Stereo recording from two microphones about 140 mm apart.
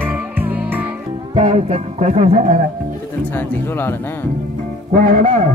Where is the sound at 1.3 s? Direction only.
50° right (ahead or behind).